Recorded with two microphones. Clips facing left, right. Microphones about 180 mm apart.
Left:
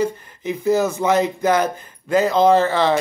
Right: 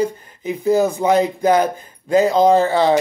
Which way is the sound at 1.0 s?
35° right (ahead or behind).